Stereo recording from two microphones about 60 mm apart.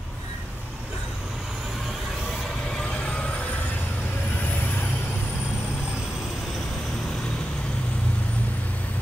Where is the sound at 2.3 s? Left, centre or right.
Centre.